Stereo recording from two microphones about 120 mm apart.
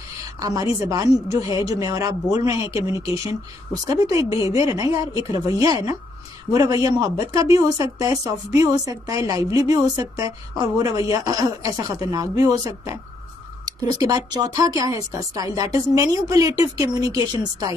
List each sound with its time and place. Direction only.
0.4 s a woman's voice: 30° right (ahead or behind)
6.5 s speech: 30° right (ahead or behind)
13.9 s a woman's voice: 30° right (ahead or behind)